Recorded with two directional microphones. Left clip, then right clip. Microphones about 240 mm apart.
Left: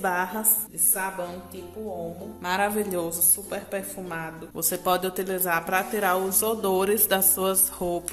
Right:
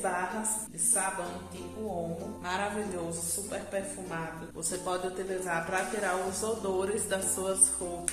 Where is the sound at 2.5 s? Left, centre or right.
Left.